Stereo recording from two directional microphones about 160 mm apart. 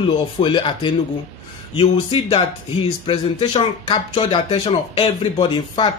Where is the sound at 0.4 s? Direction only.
30° left (ahead or behind).